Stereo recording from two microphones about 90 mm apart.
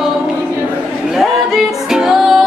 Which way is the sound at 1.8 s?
5° right (ahead or behind).